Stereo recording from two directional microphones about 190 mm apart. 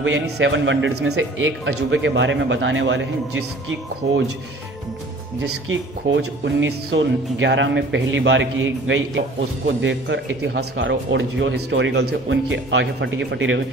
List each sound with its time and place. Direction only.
0.0 s speech: 75° right (ahead or behind)
5.4 s speech: 70° right (ahead or behind)